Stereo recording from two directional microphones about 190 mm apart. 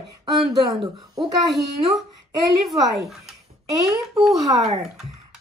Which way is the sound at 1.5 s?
Centre (ahead or behind).